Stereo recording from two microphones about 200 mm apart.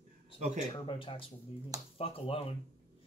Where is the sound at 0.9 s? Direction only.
25° left (ahead or behind).